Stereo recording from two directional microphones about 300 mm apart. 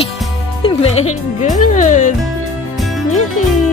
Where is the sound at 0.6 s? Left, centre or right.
Left.